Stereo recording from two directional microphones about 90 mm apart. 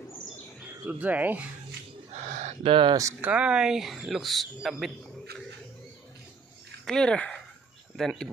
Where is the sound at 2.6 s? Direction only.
80° right.